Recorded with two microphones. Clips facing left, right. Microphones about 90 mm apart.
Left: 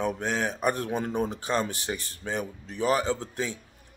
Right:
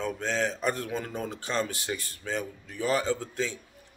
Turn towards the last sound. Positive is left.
turn(degrees=20)  # may be behind; listen again after turning